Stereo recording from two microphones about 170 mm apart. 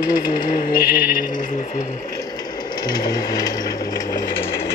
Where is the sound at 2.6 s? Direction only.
25° left (ahead or behind).